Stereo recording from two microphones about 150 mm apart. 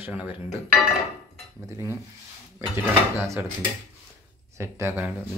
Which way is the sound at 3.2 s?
15° right (ahead or behind).